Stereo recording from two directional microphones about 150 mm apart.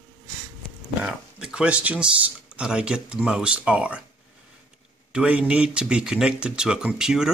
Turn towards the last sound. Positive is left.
turn(degrees=-5)  # may be behind; listen again after turning